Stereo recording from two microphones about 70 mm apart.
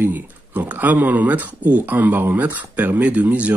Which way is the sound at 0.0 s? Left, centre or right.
Right.